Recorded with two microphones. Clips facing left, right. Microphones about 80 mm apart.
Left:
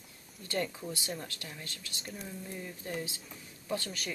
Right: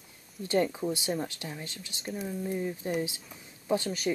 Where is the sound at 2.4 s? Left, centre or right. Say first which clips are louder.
Right 10 dB; right.